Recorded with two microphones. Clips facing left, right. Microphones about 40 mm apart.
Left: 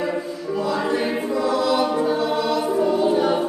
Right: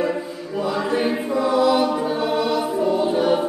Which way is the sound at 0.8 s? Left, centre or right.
Centre.